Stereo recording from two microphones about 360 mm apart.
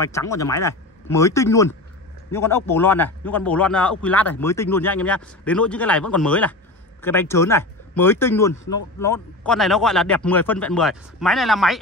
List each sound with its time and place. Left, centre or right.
0.0 s a man's voice: centre